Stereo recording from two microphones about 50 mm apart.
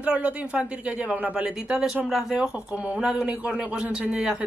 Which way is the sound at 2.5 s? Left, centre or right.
Right.